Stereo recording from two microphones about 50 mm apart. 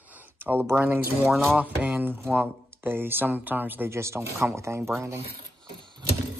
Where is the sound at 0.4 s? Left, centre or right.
Right.